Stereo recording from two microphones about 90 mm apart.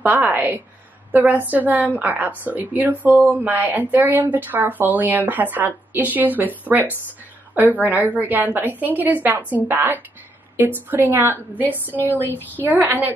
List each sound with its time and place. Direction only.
0.0 s a woman's voice: 20° right (ahead or behind)
12.3 s a woman's voice: 20° left (ahead or behind)
12.6 s a woman's voice: 20° right (ahead or behind)